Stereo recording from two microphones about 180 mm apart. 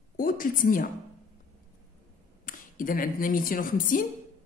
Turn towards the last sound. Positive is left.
turn(degrees=50)  # may be behind; listen again after turning